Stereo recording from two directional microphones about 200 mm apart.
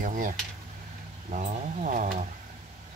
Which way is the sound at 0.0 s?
40° right (ahead or behind).